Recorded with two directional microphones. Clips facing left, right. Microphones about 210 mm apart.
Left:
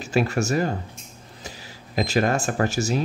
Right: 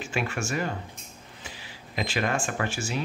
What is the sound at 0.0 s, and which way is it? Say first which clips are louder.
Speech: left 8 dB; 40° left (ahead or behind).